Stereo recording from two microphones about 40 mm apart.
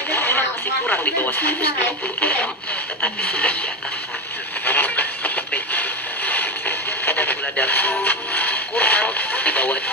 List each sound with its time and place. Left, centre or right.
0.1 s a sound: left
1.0 s speech: left
2.1 s speech: left
4.6 s music: left